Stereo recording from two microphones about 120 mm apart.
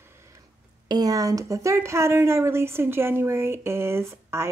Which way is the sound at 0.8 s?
35° right (ahead or behind).